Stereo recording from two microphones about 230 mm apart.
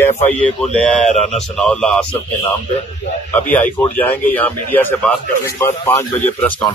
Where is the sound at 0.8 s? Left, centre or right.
Centre.